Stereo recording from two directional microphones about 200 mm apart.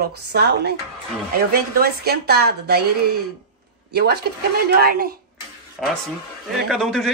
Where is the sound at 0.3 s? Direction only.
55° right (ahead or behind).